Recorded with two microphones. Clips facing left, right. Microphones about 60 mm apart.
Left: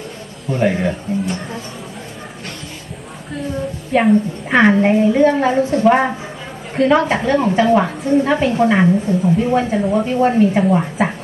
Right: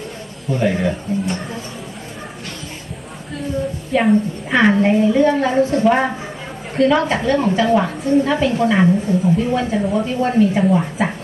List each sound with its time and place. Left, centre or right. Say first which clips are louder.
0.5 s speech: left 1 dB; centre
3.9 s a woman's voice: left 2 dB; centre
4.6 s a woman's voice: left 2 dB; centre
8.8 s a woman's voice: left 1 dB; centre
9.4 s a woman's voice: left 3 dB; left
9.7 s a woman's voice: left 2 dB; centre
10.0 s a woman's voice: left 3 dB; left